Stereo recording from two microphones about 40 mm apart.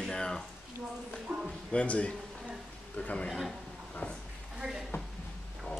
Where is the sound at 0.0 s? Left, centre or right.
Centre.